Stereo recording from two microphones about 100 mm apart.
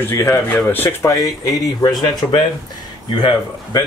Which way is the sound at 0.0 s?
25° left (ahead or behind).